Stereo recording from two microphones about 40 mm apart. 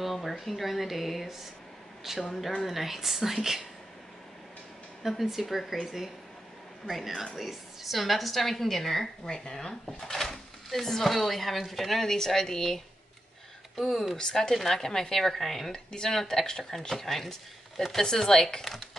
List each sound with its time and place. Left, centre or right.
0.0 s speech: centre
5.0 s speech: centre
5.6 s speech: centre
5.9 s speech: centre
7.3 s speech: centre
14.1 s speech: centre
16.9 s speech: centre